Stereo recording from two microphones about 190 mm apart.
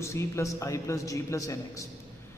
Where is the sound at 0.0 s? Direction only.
15° left (ahead or behind).